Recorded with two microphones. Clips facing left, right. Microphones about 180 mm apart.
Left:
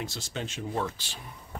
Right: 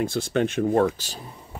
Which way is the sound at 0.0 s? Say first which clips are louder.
Right 13 dB; 55° right (ahead or behind).